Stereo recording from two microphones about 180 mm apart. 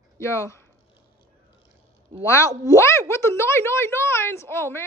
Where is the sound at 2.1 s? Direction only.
30° right (ahead or behind).